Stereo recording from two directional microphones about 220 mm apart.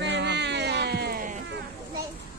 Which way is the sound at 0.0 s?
50° right (ahead or behind).